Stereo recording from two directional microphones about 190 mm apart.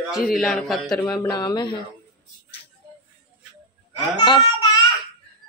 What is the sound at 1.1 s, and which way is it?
Speech, 20° left (ahead or behind).